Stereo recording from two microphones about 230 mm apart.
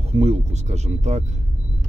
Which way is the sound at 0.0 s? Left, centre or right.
Right.